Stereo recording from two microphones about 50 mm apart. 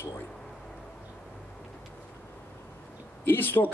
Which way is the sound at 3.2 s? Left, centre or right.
Left.